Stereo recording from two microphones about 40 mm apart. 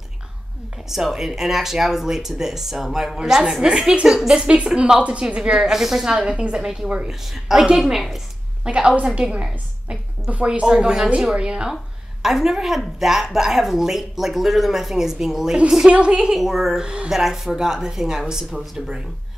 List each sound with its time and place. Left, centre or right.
0.8 s a woman's voice: centre
4.7 s a woman's voice: right
5.7 s a woman's voice: centre
8.6 s a woman's voice: centre
9.4 s a sound: right
10.3 s a woman's voice: right
10.6 s a woman's voice: centre
12.2 s a woman's voice: centre
15.9 s a woman's voice: right
16.3 s speech: centre
16.8 s a woman's voice: right
17.1 s a woman's voice: centre